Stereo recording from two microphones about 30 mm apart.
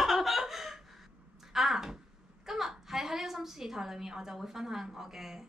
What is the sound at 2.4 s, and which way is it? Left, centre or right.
A woman's voice, centre.